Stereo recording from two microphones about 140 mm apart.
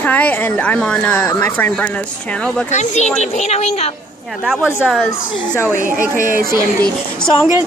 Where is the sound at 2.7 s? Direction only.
55° left (ahead or behind).